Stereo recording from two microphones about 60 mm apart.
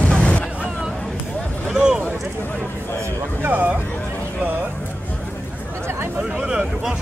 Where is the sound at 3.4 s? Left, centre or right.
Right.